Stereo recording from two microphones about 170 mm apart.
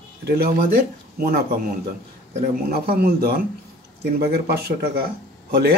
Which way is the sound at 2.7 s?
60° right (ahead or behind).